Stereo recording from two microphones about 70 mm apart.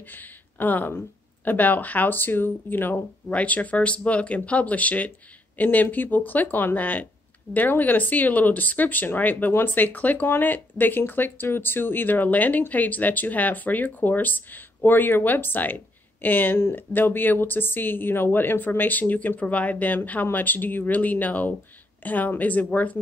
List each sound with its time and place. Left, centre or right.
0.1 s speech: left